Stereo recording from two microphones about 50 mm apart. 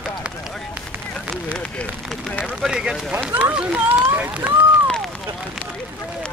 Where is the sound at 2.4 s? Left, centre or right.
Centre.